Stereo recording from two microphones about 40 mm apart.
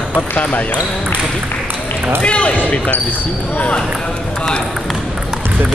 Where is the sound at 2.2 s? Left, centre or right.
Left.